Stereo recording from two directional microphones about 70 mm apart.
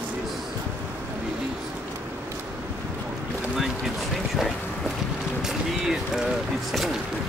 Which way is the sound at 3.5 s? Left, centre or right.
Centre.